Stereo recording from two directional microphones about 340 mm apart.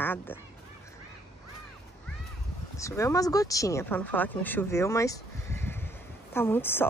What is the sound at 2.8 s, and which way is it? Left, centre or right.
Speech, centre.